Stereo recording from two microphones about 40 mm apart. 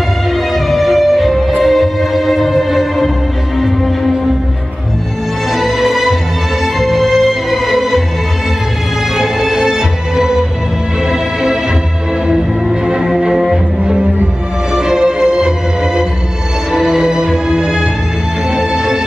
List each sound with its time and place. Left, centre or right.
0.7 s music: centre
5.6 s music: centre
9.1 s music: centre
12.8 s music: centre